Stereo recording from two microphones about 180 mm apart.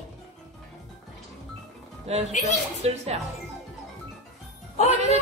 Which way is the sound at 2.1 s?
35° right (ahead or behind).